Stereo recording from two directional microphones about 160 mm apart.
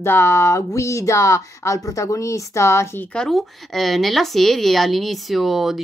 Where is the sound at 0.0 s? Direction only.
15° left (ahead or behind).